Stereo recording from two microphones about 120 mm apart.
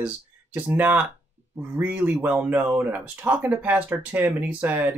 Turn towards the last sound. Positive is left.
turn(degrees=-15)  # may be behind; listen again after turning